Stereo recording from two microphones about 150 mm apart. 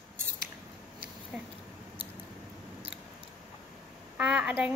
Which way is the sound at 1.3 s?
5° right (ahead or behind).